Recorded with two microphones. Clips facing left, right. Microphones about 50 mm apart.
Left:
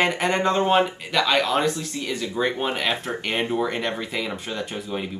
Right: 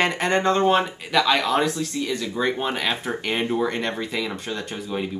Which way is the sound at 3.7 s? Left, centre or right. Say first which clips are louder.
Right 1 dB; centre.